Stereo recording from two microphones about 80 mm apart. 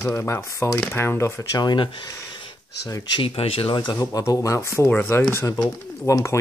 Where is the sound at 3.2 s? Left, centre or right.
Left.